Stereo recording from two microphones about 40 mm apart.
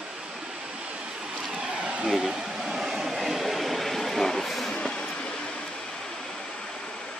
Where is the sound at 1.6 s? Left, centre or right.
Centre.